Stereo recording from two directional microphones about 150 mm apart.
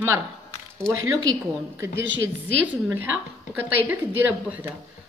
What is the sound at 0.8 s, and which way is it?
Speech, 20° right (ahead or behind).